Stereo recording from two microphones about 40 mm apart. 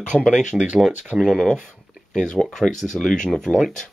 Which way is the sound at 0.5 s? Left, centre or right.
Left.